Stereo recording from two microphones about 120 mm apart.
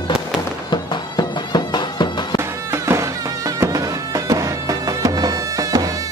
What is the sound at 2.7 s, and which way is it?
Music, 25° right (ahead or behind).